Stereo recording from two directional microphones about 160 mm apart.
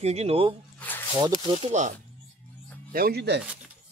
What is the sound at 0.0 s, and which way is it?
Speech, 40° right (ahead or behind).